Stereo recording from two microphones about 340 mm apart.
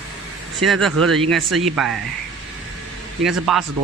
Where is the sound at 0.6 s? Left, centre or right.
Centre.